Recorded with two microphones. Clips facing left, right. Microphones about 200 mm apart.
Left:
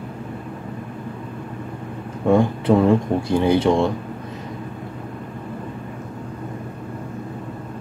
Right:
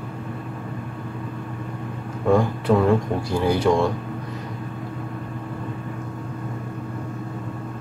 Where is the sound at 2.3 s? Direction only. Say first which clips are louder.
Left 2 dB; 25° left (ahead or behind).